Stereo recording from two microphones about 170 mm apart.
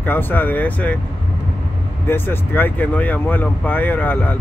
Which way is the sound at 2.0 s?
10° left (ahead or behind).